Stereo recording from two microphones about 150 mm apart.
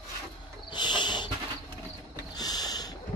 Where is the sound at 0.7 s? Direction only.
30° left (ahead or behind).